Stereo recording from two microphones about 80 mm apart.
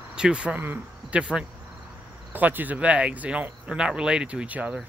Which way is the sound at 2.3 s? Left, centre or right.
Right.